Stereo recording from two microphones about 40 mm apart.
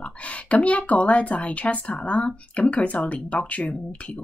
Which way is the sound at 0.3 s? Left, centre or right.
Left.